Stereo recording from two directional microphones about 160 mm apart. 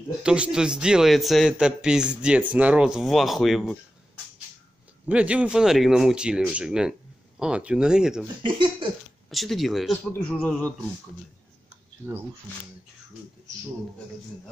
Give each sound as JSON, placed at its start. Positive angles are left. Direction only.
{"t": 0.2, "sound": "speech", "side_deg": -5}
{"t": 5.0, "sound": "speech", "side_deg": -10}
{"t": 8.4, "sound": "speech", "side_deg": -30}
{"t": 9.3, "sound": "speech", "side_deg": 0}
{"t": 12.0, "sound": "speech", "side_deg": -10}